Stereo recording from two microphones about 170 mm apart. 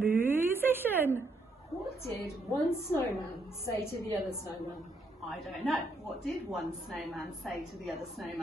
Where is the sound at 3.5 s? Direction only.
15° left (ahead or behind).